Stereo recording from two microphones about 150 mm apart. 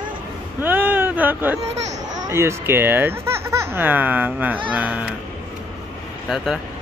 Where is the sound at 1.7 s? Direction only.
50° right (ahead or behind).